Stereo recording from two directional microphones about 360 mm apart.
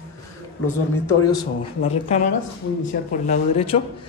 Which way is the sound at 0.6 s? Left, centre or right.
Centre.